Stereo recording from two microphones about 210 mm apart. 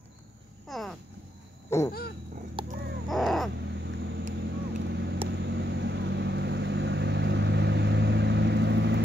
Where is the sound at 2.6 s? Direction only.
25° right (ahead or behind).